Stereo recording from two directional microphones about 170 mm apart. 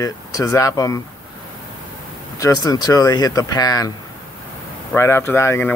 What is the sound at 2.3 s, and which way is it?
Speech, 20° left (ahead or behind).